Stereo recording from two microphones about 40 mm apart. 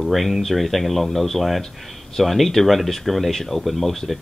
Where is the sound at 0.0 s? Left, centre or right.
Centre.